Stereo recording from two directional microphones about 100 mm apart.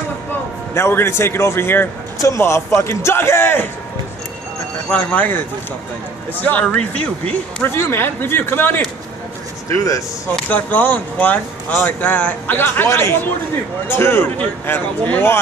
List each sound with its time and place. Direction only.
0.7 s a man's voice: 25° left (ahead or behind)
4.8 s speech: 15° left (ahead or behind)
6.4 s speech: 15° left (ahead or behind)
7.6 s a man's voice: 25° left (ahead or behind)
9.7 s speech: 35° left (ahead or behind)
10.5 s a man's voice: 15° left (ahead or behind)